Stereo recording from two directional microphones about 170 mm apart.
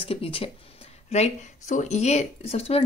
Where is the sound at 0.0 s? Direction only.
35° left (ahead or behind).